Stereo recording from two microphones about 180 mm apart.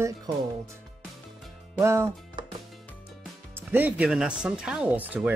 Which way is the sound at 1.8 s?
15° right (ahead or behind).